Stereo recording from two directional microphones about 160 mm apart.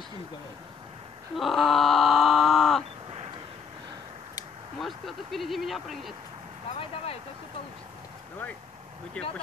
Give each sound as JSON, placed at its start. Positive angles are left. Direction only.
{"t": 1.3, "sound": "groan", "side_deg": 0}
{"t": 3.1, "sound": "a sound", "side_deg": -35}
{"t": 4.7, "sound": "speech", "side_deg": 0}